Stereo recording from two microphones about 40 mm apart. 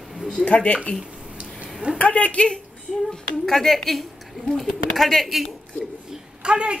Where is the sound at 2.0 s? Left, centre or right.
Left.